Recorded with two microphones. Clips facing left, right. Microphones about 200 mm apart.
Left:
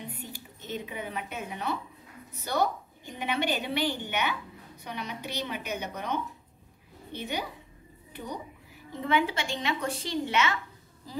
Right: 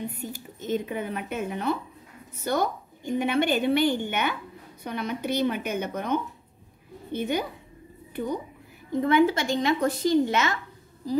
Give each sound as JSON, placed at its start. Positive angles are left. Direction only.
{"t": 0.2, "sound": "a woman's voice", "side_deg": -45}
{"t": 8.9, "sound": "a woman's voice", "side_deg": -45}